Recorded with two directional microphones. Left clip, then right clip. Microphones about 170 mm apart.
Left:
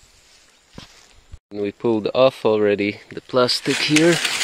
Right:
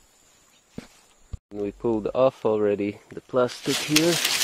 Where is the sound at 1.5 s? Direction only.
10° left (ahead or behind).